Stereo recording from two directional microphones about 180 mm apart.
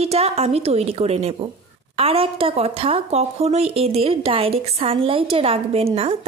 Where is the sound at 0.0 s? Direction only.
35° right (ahead or behind).